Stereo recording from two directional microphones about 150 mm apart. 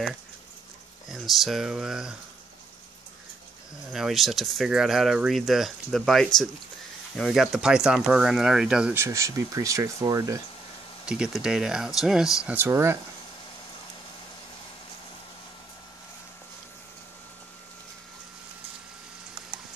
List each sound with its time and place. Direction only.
1.0 s speech: centre (ahead or behind)
3.9 s speech: centre (ahead or behind); by 10.4 s 20° right (ahead or behind)
11.1 s speech: 5° right (ahead or behind)
12.4 s speech: 15° right (ahead or behind)